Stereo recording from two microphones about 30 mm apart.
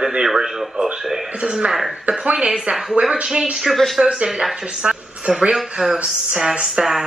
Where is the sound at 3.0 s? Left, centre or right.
Right.